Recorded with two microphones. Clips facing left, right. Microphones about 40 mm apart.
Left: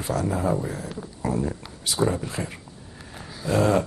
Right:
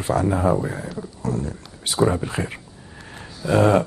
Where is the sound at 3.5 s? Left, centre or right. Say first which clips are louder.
Right 4 dB; right.